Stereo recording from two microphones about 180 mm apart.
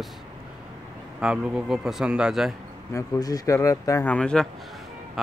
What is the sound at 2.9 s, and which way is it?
Speech, 20° left (ahead or behind).